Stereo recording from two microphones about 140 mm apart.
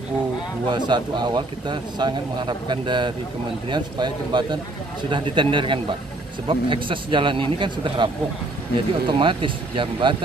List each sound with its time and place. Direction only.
0.7 s a man's voice: 35° right (ahead or behind)